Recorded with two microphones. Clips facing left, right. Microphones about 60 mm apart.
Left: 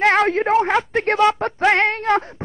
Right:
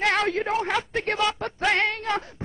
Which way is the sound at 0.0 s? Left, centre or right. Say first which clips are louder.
Left 7 dB; left.